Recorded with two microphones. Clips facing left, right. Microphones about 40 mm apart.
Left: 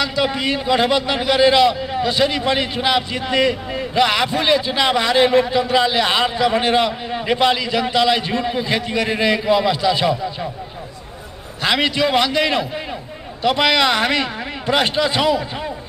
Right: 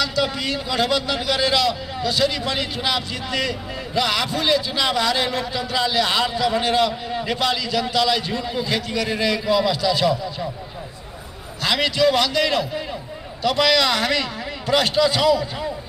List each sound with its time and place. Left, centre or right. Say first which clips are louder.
0.0 s a man's voice: left 3 dB; left
11.6 s a man's voice: left 1 dB; left